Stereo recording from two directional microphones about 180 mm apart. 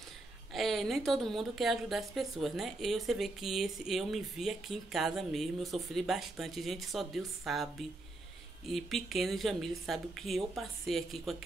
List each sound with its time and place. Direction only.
0.5 s a woman's voice: centre (ahead or behind)